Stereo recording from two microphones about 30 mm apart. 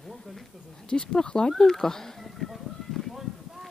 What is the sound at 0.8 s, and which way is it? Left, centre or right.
Speech, left.